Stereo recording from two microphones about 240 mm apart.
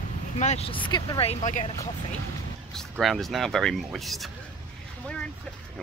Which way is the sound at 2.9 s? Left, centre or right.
Centre.